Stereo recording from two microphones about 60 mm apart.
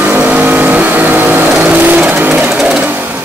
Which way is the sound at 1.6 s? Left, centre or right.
Right.